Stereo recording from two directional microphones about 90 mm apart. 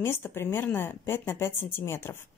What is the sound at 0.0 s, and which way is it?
Speech, 25° left (ahead or behind).